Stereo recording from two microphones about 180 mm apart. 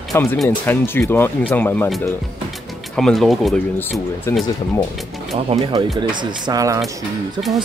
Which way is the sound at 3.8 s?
10° left (ahead or behind).